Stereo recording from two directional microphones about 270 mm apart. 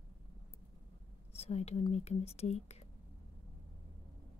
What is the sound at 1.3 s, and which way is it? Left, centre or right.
Speech, left.